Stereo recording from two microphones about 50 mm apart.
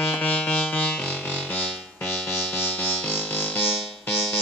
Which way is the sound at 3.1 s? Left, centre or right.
Left.